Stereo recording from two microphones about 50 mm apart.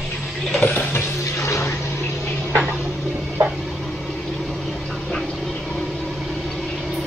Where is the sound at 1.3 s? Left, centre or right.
Left.